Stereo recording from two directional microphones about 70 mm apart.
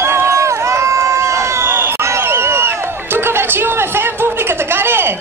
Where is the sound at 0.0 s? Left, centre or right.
Right.